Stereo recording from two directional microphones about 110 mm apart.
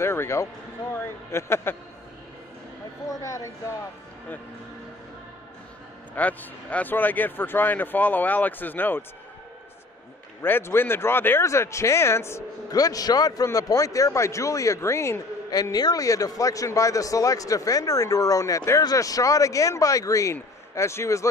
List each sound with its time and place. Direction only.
0.0 s speech: 20° left (ahead or behind)
3.1 s speech: 30° left (ahead or behind)
6.1 s a man's voice: 15° left (ahead or behind)
10.4 s speech: 20° left (ahead or behind)